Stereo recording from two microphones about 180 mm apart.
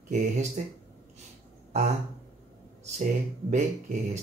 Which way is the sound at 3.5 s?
40° right (ahead or behind).